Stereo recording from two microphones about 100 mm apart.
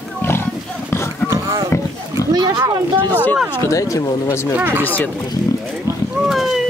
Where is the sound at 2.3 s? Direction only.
40° right (ahead or behind).